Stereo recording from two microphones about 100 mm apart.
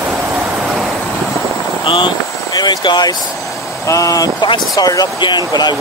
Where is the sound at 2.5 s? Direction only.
45° left (ahead or behind).